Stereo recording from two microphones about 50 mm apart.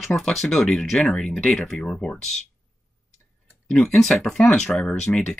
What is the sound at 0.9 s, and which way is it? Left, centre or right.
Speech, centre.